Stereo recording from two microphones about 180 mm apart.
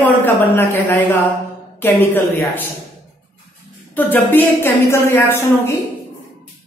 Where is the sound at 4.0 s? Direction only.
10° left (ahead or behind).